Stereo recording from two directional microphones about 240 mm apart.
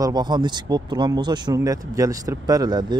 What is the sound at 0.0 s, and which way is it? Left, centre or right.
Speech, centre.